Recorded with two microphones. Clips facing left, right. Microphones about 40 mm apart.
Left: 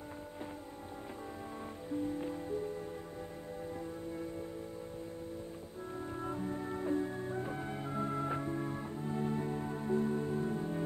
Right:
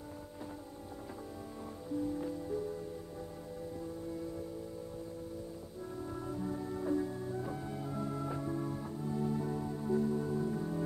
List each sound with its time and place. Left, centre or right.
1.9 s music: left
6.4 s music: left